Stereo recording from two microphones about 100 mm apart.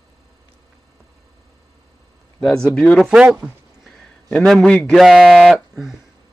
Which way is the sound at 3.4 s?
Centre (ahead or behind).